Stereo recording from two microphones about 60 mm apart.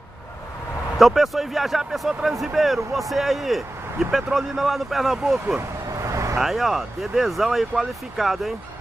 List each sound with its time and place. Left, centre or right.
0.9 s speech: centre
5.6 s vehicle: right
6.4 s speech: centre